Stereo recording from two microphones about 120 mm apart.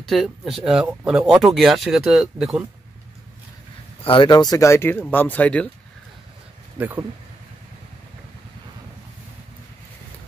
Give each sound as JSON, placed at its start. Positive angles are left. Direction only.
{"t": 0.0, "sound": "speech", "side_deg": 0}
{"t": 4.0, "sound": "speech", "side_deg": 45}
{"t": 4.3, "sound": "speech", "side_deg": 30}
{"t": 6.8, "sound": "speech", "side_deg": -15}